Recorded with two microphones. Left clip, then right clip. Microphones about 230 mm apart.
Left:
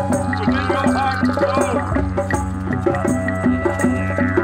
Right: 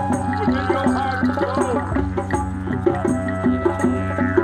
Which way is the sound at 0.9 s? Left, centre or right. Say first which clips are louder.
Left 2 dB; left.